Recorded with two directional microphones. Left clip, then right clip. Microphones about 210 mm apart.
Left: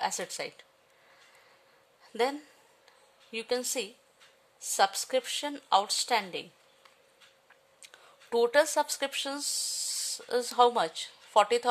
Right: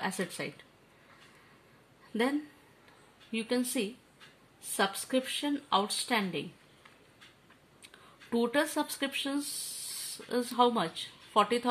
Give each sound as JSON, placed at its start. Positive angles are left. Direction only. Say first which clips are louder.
{"t": 0.0, "sound": "speech", "louder": "left 3 dB", "side_deg": 55}
{"t": 3.3, "sound": "speech", "louder": "left 1 dB", "side_deg": 55}
{"t": 7.8, "sound": "speech", "louder": "even", "side_deg": 60}